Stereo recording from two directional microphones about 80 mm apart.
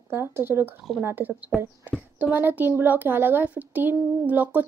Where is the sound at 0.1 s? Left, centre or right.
Right.